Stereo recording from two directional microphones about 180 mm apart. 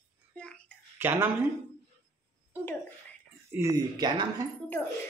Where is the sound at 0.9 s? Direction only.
10° right (ahead or behind).